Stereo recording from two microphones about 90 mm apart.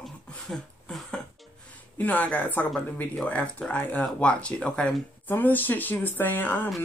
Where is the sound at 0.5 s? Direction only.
5° left (ahead or behind).